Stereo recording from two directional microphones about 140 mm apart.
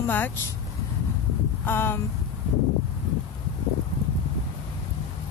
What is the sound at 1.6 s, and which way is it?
Speech, 15° left (ahead or behind).